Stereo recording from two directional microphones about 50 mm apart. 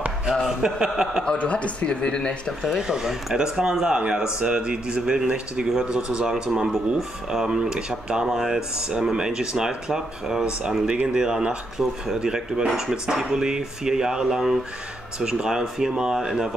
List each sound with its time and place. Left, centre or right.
0.3 s speech: centre
1.2 s a man's voice: left
2.6 s speech: centre